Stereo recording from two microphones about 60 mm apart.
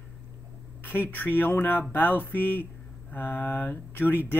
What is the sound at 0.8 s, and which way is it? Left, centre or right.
Speech, left.